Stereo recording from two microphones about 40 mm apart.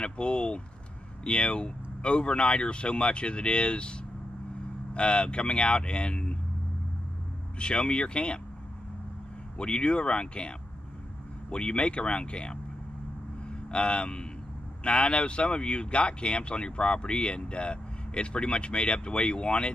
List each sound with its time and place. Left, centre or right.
0.0 s speech: left
4.9 s speech: left
7.5 s speech: left
9.6 s speech: left
11.5 s speech: left